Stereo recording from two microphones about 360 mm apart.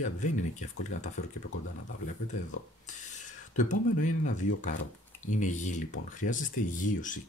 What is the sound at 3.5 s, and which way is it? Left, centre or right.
Speech, left.